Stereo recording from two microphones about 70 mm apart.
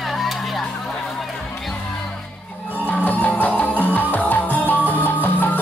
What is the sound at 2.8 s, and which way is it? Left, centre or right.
Music, left.